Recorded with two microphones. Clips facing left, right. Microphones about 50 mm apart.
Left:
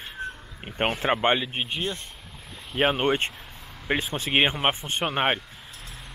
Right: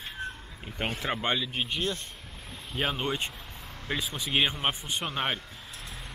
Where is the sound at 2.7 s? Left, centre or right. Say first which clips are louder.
Left 8 dB; left.